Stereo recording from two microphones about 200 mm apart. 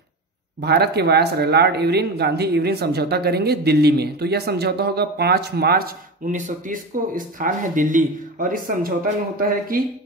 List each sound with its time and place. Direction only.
0.6 s speech: 55° right (ahead or behind)